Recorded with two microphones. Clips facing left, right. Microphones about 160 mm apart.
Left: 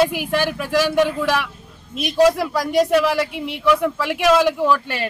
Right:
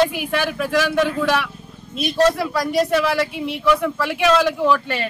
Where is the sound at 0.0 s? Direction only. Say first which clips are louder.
Left 1 dB; 5° left (ahead or behind).